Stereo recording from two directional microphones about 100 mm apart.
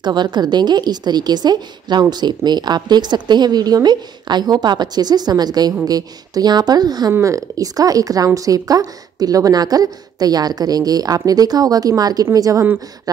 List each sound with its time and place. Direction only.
0.0 s a woman's voice: 45° right (ahead or behind)